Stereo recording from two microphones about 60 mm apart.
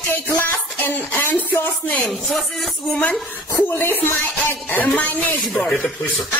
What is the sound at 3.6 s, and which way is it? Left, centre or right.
Speech, left.